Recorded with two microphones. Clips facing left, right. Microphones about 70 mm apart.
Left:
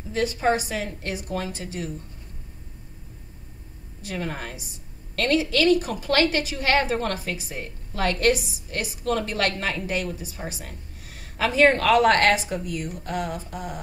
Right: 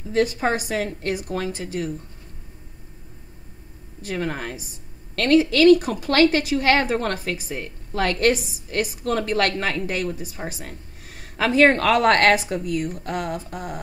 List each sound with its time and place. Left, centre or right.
0.7 s a woman's voice: right
4.0 s a woman's voice: right